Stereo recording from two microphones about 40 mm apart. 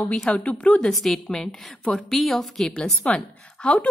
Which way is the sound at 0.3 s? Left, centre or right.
Left.